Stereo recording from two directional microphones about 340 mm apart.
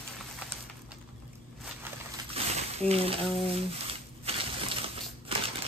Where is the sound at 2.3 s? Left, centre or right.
Centre.